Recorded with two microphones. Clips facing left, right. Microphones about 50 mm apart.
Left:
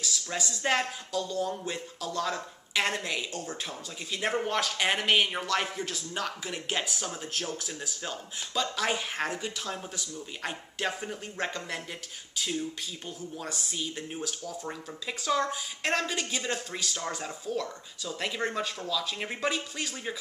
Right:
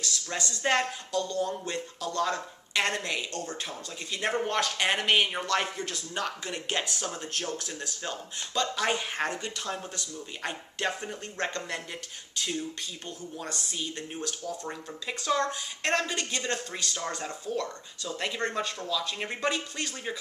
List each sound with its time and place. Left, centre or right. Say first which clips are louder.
0.0 s speech: even; centre